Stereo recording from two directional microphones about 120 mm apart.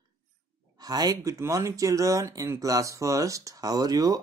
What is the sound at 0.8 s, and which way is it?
Speech, 30° right (ahead or behind).